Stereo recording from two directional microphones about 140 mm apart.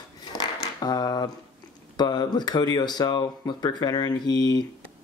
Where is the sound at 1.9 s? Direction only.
30° left (ahead or behind).